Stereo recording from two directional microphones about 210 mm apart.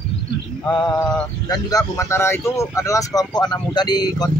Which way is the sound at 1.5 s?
15° left (ahead or behind).